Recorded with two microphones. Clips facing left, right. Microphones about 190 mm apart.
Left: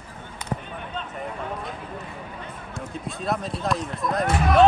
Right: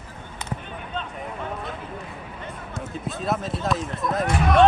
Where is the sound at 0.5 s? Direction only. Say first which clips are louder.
Left 3 dB; 40° left (ahead or behind).